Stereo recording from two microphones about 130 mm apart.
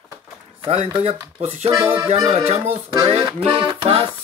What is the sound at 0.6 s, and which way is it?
Speech, 55° right (ahead or behind).